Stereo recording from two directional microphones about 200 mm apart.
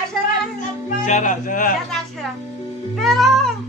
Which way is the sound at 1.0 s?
40° left (ahead or behind).